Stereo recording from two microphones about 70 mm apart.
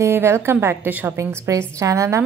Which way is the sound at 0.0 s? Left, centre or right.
Right.